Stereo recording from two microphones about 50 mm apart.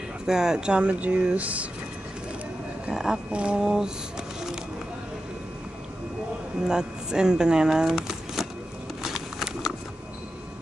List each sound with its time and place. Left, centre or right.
0.3 s speech: centre; by 1.7 s right
2.9 s speech: centre
3.3 s speech: right
3.6 s speech: centre
6.7 s speech: centre
7.8 s a sound: centre